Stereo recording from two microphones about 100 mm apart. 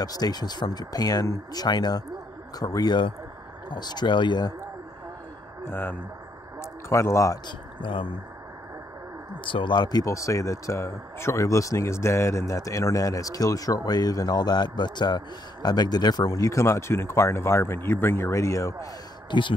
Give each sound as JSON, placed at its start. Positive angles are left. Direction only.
{"t": 0.0, "sound": "speech", "side_deg": 40}
{"t": 5.7, "sound": "speech", "side_deg": 20}
{"t": 7.4, "sound": "speech", "side_deg": 55}
{"t": 9.4, "sound": "speech", "side_deg": 55}
{"t": 19.3, "sound": "speech", "side_deg": 50}